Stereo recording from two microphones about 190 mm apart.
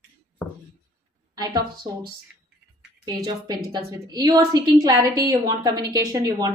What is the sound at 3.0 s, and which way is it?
A woman's voice, 20° right (ahead or behind).